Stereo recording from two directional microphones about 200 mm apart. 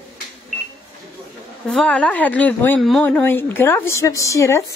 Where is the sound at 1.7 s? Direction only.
5° left (ahead or behind).